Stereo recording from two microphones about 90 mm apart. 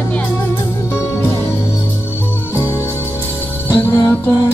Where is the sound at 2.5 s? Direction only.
30° left (ahead or behind).